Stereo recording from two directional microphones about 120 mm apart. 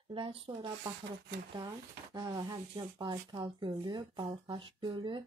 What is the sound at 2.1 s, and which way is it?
Speech, 30° right (ahead or behind).